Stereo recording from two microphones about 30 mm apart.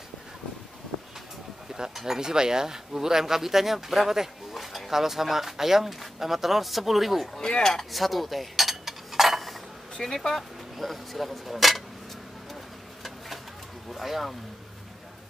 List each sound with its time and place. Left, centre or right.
1.7 s speech: centre
4.6 s speech: centre
7.9 s a sound: centre
10.0 s speech: centre
13.9 s speech: centre